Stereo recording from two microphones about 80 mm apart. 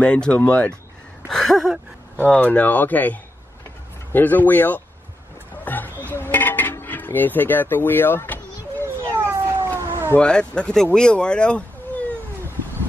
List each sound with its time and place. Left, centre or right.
0.0 s speech: centre
1.3 s a sound: centre
2.1 s speech: centre
5.7 s a sound: left
8.8 s cat: right
10.1 s speech: centre